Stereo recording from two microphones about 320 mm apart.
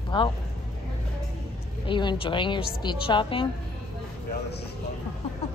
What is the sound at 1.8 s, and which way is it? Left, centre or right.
A woman's voice, centre.